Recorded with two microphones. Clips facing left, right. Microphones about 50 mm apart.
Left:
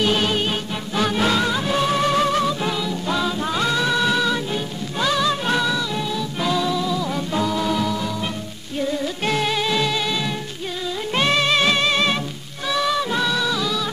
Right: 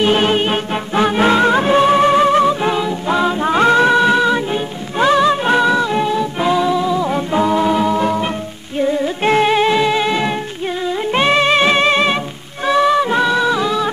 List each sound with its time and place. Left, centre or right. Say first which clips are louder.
0.0 s music: right 6 dB; right
8.7 s music: right 7 dB; right